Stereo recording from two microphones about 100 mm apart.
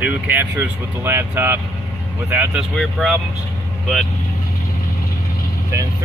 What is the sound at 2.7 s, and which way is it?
Speech, centre (ahead or behind).